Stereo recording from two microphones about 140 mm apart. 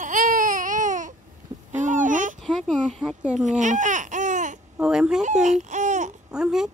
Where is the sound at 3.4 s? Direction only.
60° right (ahead or behind).